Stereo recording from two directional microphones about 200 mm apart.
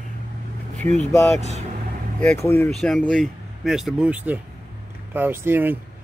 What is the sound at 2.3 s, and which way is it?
Speech, 15° left (ahead or behind).